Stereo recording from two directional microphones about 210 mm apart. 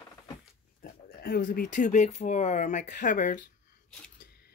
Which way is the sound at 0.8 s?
45° left (ahead or behind).